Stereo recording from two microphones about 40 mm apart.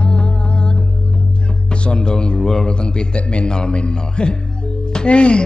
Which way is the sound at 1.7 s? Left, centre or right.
Left.